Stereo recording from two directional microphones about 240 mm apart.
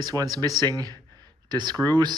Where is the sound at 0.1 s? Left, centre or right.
Centre.